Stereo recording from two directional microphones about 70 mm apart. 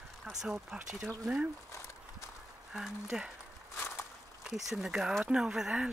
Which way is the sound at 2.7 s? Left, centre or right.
Centre.